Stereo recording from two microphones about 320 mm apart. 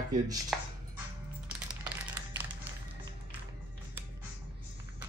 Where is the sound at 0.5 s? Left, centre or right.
Centre.